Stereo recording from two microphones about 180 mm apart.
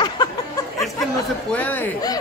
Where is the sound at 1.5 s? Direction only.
10° left (ahead or behind).